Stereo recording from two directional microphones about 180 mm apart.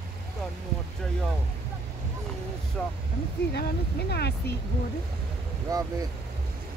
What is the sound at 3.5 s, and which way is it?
Speech, 65° left (ahead or behind).